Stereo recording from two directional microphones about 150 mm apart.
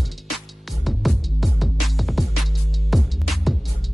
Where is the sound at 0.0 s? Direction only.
Centre (ahead or behind).